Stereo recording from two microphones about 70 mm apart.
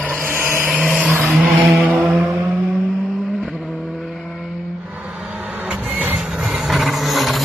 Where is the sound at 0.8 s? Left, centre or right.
Centre.